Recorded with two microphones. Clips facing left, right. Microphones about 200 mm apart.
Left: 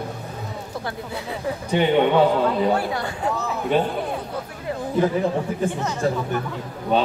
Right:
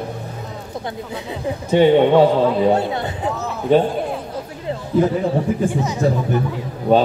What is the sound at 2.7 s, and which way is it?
Speech, 25° right (ahead or behind).